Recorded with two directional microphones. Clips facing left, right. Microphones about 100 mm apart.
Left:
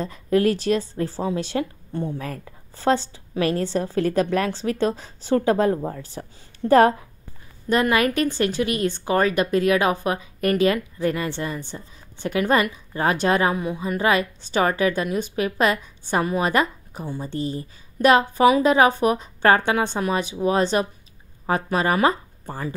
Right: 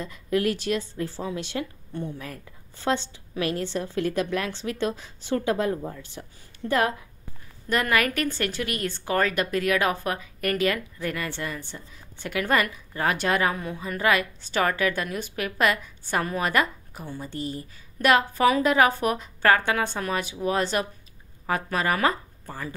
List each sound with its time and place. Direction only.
0.0 s speech: 35° left (ahead or behind)
7.7 s speech: 20° left (ahead or behind)